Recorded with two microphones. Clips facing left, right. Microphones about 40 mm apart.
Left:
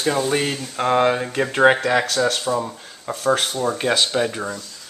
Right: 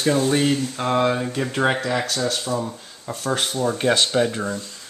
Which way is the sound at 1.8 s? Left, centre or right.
Left.